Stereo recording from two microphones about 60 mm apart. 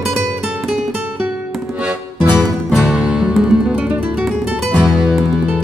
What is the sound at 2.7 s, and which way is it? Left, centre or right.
Music, centre.